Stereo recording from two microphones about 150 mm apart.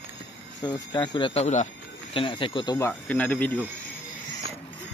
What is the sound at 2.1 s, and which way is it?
Speech, 35° left (ahead or behind).